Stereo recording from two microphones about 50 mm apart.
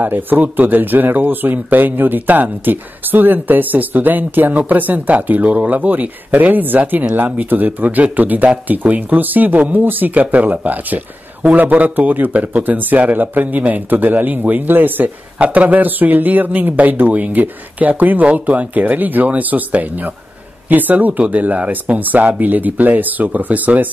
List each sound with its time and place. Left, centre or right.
0.0 s speech: right
15.3 s speech: right